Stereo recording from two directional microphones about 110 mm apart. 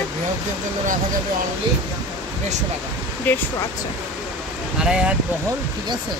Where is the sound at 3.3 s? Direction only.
15° left (ahead or behind).